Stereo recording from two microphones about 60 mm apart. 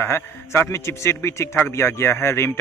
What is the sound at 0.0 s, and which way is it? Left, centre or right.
Speech, left.